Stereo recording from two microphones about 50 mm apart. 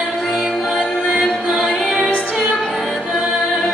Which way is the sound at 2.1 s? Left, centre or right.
Left.